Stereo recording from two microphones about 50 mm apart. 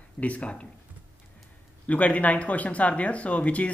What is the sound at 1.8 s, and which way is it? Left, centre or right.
Speech, left.